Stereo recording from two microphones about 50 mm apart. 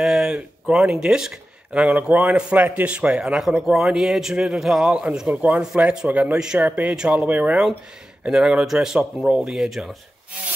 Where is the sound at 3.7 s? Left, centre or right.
Centre.